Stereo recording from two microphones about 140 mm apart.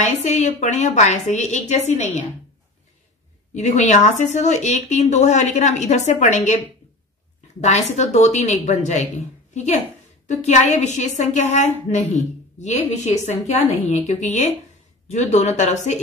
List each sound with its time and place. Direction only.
0.0 s a woman's voice: 55° left (ahead or behind)
3.5 s a woman's voice: 55° left (ahead or behind)
7.6 s a woman's voice: 55° left (ahead or behind)